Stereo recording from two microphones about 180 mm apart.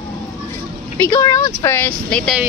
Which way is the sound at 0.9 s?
15° left (ahead or behind).